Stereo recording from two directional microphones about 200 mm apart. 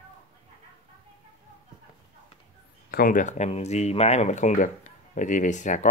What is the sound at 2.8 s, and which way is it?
Speech, 45° left (ahead or behind).